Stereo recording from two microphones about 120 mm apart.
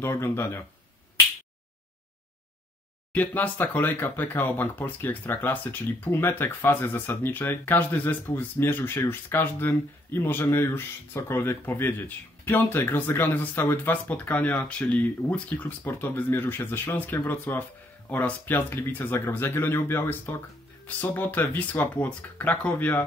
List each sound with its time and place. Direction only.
0.0 s speech: 20° left (ahead or behind)
3.1 s speech: 15° left (ahead or behind)